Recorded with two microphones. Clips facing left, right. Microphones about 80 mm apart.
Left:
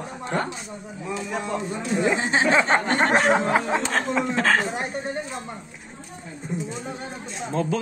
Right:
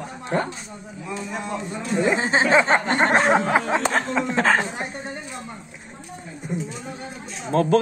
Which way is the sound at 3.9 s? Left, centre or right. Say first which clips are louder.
Right 1 dB; centre.